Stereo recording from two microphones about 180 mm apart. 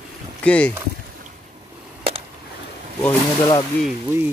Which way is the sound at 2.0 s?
30° right (ahead or behind).